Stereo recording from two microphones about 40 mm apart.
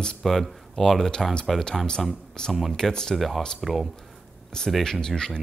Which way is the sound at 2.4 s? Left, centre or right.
Centre.